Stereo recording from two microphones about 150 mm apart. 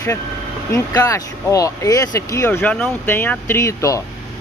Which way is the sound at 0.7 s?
20° left (ahead or behind).